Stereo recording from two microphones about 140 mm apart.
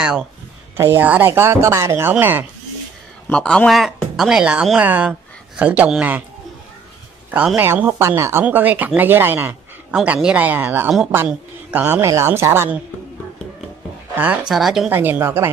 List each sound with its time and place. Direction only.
0.0 s speech: 5° right (ahead or behind)
0.7 s speech: 15° right (ahead or behind)
3.3 s speech: 5° left (ahead or behind); by 6.2 s 10° right (ahead or behind)
7.2 s speech: 10° right (ahead or behind)
14.1 s speech: 10° right (ahead or behind)
14.9 s speech: 15° right (ahead or behind)